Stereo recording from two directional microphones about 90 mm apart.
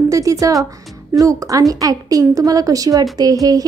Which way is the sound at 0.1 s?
40° right (ahead or behind).